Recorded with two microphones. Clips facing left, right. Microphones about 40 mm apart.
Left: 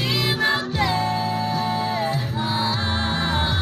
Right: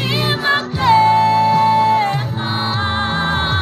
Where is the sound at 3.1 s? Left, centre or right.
Right.